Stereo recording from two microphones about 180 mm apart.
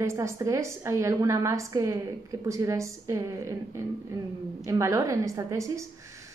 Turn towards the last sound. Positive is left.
turn(degrees=-15)  # may be behind; listen again after turning